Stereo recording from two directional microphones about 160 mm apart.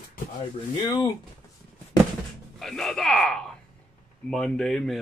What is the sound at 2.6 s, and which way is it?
Speech, centre (ahead or behind).